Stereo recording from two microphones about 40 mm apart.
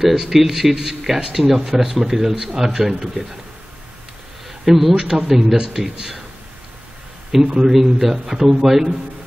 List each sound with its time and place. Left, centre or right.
0.0 s speech: centre
4.6 s speech: centre
7.4 s a man's voice: right
7.7 s speech: centre